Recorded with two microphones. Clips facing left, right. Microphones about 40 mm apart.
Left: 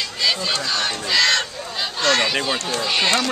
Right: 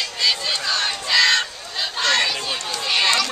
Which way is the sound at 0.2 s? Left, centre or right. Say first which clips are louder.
Left 1 dB; centre.